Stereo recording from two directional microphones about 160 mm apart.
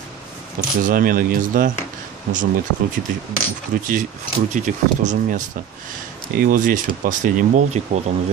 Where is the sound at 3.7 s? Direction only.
60° right (ahead or behind).